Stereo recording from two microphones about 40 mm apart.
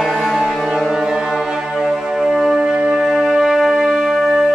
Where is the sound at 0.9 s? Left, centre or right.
Centre.